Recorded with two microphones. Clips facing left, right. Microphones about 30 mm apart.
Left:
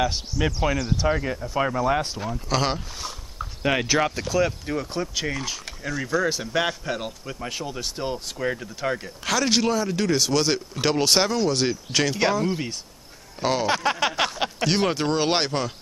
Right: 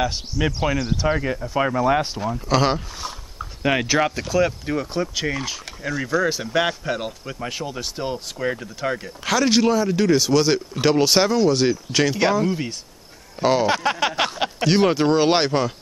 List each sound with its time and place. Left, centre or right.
0.4 s speech: centre